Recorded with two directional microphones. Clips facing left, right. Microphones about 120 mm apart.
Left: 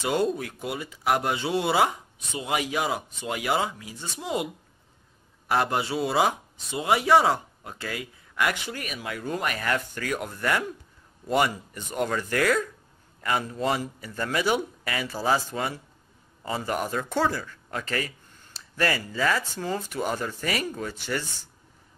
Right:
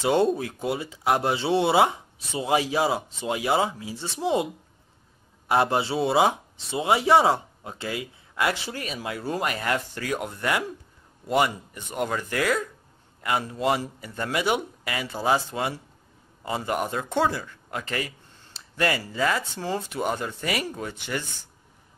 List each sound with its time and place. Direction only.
0.0 s speech: 30° right (ahead or behind)
5.5 s speech: 25° right (ahead or behind)
11.5 s speech: 15° right (ahead or behind)
13.7 s speech: 25° right (ahead or behind)